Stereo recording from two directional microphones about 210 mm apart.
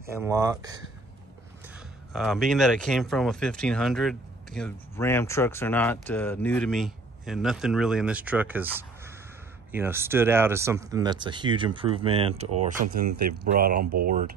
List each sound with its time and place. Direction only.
0.1 s speech: 15° right (ahead or behind)
2.1 s speech: centre (ahead or behind); by 14.3 s 40° right (ahead or behind)